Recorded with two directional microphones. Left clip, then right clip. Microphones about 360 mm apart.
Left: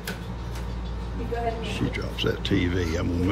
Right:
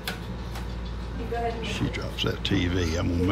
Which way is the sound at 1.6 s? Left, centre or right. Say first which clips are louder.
Left 1 dB; centre.